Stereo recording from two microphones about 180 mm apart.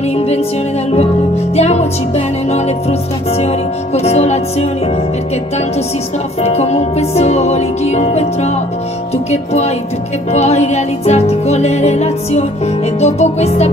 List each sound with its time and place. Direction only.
0.1 s music: 35° left (ahead or behind)
1.5 s music: 35° left (ahead or behind)
6.4 s music: 35° left (ahead or behind)